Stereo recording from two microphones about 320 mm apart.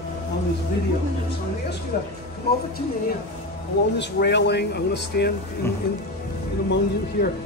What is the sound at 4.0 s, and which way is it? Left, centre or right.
Speech, left.